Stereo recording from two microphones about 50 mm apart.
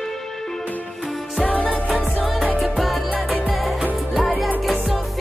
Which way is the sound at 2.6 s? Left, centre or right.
Centre.